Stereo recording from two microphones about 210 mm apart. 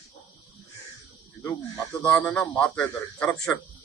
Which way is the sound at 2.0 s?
5° left (ahead or behind).